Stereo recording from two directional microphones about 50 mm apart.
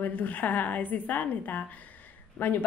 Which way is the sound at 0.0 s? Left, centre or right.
Left.